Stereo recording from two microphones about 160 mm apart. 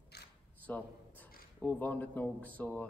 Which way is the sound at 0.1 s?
90° left.